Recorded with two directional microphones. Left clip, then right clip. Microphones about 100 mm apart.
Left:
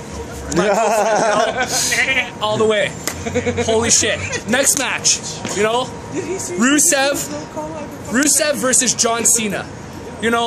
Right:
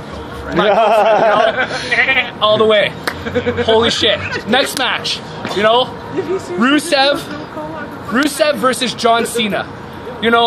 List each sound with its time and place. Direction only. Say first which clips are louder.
0.5 s speech: right 4 dB; 30° left (ahead or behind)